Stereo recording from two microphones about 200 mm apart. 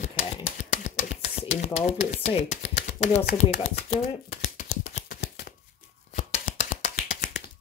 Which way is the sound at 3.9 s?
30° left (ahead or behind).